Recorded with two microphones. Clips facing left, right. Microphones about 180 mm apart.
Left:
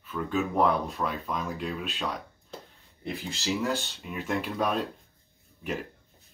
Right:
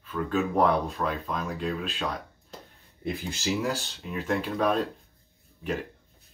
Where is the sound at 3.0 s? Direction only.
15° right (ahead or behind).